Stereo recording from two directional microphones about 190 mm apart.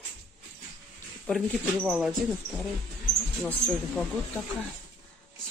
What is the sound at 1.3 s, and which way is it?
Speech, centre (ahead or behind).